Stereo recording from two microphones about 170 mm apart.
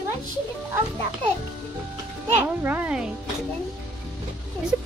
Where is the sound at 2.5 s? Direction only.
10° right (ahead or behind).